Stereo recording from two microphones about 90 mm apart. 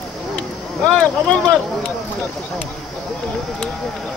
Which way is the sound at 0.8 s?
15° left (ahead or behind).